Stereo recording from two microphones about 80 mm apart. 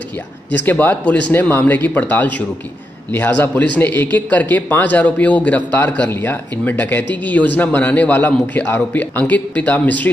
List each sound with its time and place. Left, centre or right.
0.5 s speech: left